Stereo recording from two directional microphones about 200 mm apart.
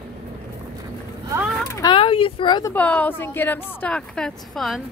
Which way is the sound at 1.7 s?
20° left (ahead or behind).